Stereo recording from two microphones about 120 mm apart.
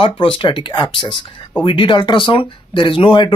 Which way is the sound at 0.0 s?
45° left (ahead or behind).